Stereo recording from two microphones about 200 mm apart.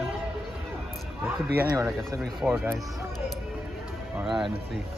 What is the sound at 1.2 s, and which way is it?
Speech, 10° right (ahead or behind).